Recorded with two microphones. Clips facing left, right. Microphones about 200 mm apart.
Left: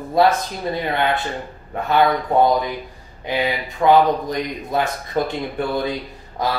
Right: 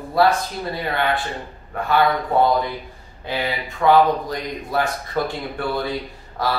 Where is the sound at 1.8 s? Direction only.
20° left (ahead or behind).